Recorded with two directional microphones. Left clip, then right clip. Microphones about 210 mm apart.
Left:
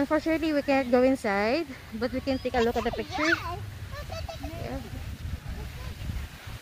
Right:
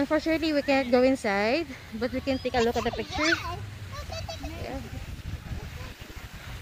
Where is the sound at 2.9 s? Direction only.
35° left (ahead or behind).